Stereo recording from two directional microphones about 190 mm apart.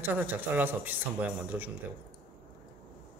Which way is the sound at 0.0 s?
10° right (ahead or behind).